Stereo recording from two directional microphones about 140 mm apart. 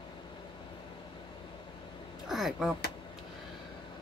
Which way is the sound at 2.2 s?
Centre (ahead or behind).